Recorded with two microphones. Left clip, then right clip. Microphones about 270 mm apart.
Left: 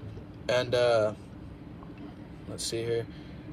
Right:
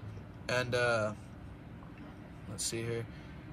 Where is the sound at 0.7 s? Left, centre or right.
Centre.